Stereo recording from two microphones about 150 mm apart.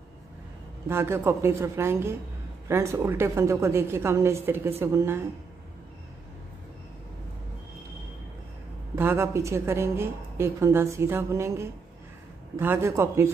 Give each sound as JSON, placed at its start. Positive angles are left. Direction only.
{"t": 0.8, "sound": "a woman's voice", "side_deg": -15}
{"t": 8.9, "sound": "a woman's voice", "side_deg": -15}